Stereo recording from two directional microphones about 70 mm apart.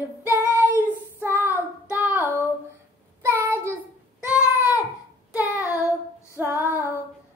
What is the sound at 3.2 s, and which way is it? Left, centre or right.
Child singing, right.